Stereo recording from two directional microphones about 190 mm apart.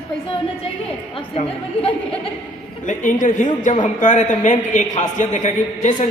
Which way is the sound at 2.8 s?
40° left (ahead or behind).